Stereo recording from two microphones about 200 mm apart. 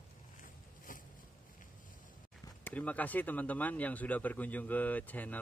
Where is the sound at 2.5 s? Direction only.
10° left (ahead or behind).